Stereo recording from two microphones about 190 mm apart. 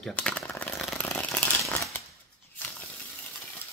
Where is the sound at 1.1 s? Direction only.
5° left (ahead or behind).